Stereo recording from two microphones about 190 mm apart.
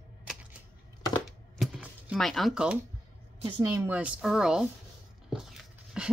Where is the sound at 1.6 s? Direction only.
5° right (ahead or behind).